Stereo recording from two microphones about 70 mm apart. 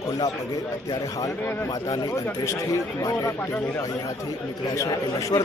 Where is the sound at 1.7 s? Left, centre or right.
Left.